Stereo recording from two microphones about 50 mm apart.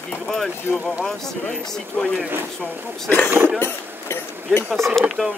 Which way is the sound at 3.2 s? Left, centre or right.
Right.